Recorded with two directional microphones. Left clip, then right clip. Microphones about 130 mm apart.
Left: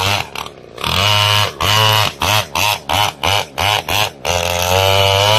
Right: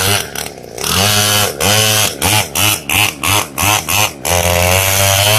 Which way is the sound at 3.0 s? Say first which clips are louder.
Right 1 dB; centre (ahead or behind).